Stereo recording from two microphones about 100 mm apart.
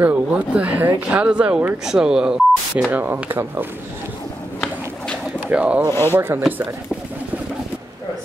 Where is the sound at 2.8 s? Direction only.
20° right (ahead or behind).